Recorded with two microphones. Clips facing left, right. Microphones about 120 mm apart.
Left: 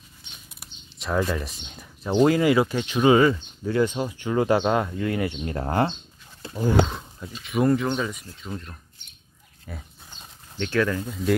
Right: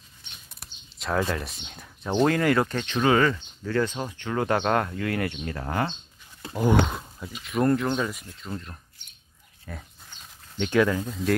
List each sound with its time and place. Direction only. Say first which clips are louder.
0.6 s speech: right 1 dB; centre (ahead or behind)
5.3 s speech: left 4 dB; 30° left (ahead or behind)
6.4 s speech: right 1 dB; 20° right (ahead or behind)
6.9 s speech: even; 5° right (ahead or behind)
9.7 s livestock: even; 5° left (ahead or behind)
10.6 s speech: right 2 dB; 15° right (ahead or behind)
11.0 s speech: left 1 dB; centre (ahead or behind)